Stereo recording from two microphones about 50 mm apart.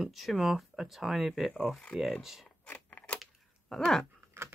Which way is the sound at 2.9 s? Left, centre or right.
Left.